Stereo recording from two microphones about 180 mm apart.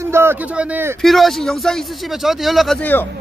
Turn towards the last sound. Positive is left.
turn(degrees=10)  # may be behind; listen again after turning